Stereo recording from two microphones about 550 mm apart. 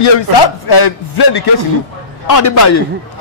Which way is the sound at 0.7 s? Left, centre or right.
Left.